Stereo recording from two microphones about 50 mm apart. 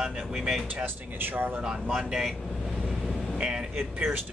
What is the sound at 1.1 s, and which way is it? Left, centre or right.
Speech, right.